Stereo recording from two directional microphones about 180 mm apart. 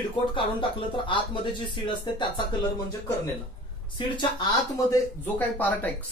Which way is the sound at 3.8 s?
25° left (ahead or behind).